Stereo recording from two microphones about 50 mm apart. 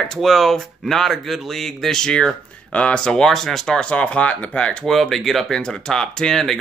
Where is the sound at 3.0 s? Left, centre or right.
Centre.